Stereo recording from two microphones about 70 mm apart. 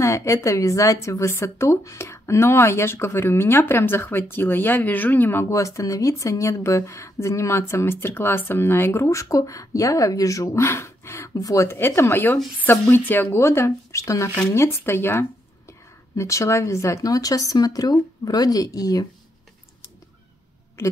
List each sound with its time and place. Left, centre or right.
0.0 s a woman's voice: left
5.5 s speech: left
11.7 s a woman's voice: left